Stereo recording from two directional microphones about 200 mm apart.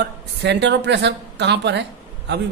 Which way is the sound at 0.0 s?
60° right (ahead or behind).